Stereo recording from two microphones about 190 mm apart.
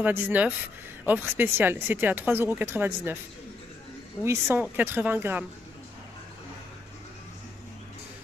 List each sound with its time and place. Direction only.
0.0 s speech: 10° right (ahead or behind)
4.2 s speech: 15° right (ahead or behind)